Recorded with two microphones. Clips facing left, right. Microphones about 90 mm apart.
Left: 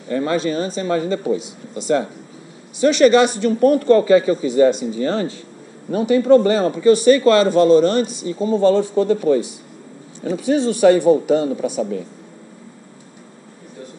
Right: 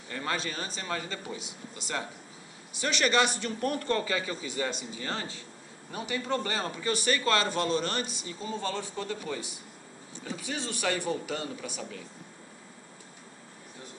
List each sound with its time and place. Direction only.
0.1 s speech: 35° left (ahead or behind)
4.9 s speech: 40° left (ahead or behind)